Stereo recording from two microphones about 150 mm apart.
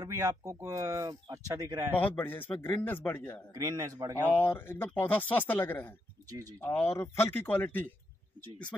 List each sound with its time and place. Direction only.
0.0 s speech: 20° right (ahead or behind)
1.9 s speech: 10° left (ahead or behind)
3.5 s speech: 25° right (ahead or behind)
4.4 s speech: 15° left (ahead or behind)